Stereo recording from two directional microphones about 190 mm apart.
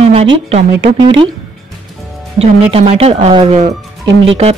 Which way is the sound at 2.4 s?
30° right (ahead or behind).